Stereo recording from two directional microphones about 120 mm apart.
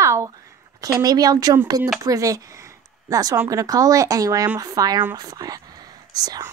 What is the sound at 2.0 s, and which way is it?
A woman's voice, 30° right (ahead or behind).